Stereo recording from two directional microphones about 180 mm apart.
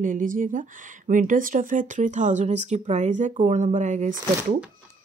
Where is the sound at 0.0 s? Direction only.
50° right (ahead or behind).